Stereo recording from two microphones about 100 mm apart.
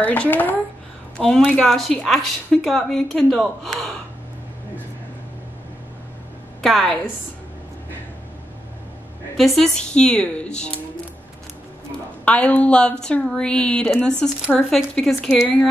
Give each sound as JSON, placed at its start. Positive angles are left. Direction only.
{"t": 0.0, "sound": "a woman's voice", "side_deg": 15}
{"t": 6.6, "sound": "a woman's voice", "side_deg": 5}
{"t": 9.4, "sound": "a woman's voice", "side_deg": 0}
{"t": 11.9, "sound": "a woman's voice", "side_deg": 15}